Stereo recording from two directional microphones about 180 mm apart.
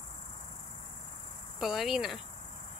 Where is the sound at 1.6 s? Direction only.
Centre (ahead or behind).